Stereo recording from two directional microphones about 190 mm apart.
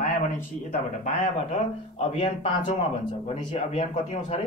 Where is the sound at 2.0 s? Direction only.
35° left (ahead or behind).